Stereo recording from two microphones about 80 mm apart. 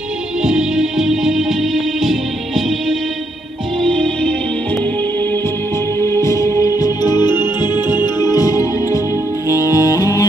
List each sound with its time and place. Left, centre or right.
0.4 s music: centre
5.9 s music: left
9.6 s saxophone: left